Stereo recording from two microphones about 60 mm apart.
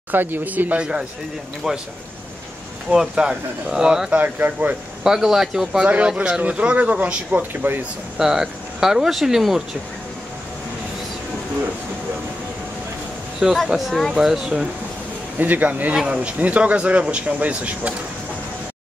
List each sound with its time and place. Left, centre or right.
0.1 s speech: right; by 1.8 s centre
2.9 s speech: centre
4.2 s speech: right
5.0 s speech: centre; by 7.8 s right
8.2 s speech: centre
13.4 s speech: centre
13.7 s speech: centre
15.3 s speech: right